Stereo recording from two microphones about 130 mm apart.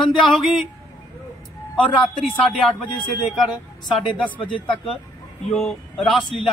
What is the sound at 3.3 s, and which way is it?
Speech, centre (ahead or behind).